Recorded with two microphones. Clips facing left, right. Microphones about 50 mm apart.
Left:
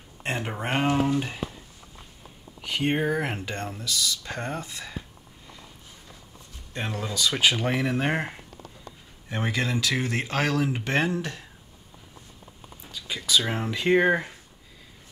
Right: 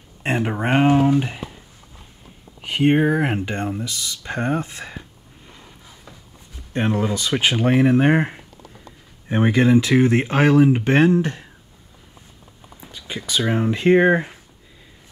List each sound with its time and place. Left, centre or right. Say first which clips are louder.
0.2 s speech: right 8 dB; right
2.6 s speech: right 8 dB; right
6.7 s speech: right 10 dB; right
12.9 s a sound: left 1 dB; right
13.4 s speech: right 7 dB; centre
13.7 s speech: right 7 dB; right